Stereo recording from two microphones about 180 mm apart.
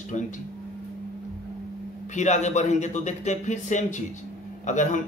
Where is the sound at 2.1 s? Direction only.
40° left (ahead or behind).